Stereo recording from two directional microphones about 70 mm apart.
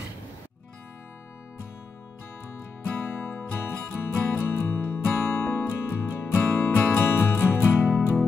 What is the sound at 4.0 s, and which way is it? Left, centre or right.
Music, left.